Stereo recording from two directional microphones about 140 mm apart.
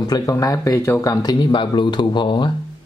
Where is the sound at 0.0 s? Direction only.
25° left (ahead or behind).